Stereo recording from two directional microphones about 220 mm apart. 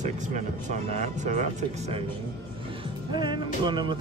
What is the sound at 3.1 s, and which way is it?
Speech, 20° right (ahead or behind).